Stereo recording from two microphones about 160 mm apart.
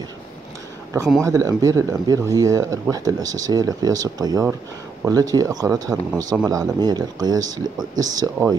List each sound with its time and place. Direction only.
1.2 s speech: 20° right (ahead or behind)